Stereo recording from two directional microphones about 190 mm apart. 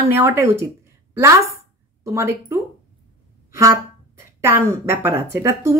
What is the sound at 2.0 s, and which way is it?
Speech, 15° right (ahead or behind).